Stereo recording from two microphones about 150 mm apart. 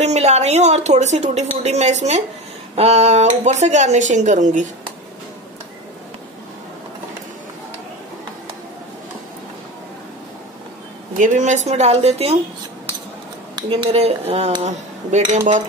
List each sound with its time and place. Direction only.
0.0 s a woman's voice: 45° right (ahead or behind)
11.1 s a woman's voice: 55° right (ahead or behind)
13.6 s a woman's voice: 35° right (ahead or behind); by 15.6 s 55° right (ahead or behind)